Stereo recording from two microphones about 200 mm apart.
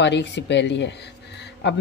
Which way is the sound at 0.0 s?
60° left (ahead or behind).